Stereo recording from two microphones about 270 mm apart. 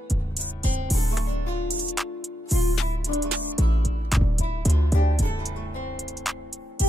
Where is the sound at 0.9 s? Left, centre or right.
Centre.